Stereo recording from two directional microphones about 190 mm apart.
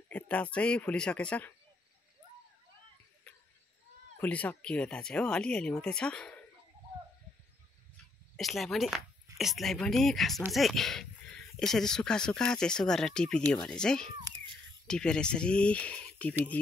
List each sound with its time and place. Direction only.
0.1 s speech: 5° left (ahead or behind)
4.2 s speech: 10° left (ahead or behind)
8.4 s speech: centre (ahead or behind)